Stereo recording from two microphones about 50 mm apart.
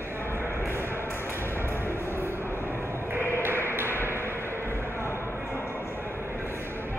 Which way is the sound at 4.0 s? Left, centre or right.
Right.